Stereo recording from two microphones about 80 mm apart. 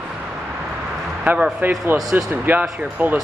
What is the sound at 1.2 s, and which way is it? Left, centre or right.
Speech, centre.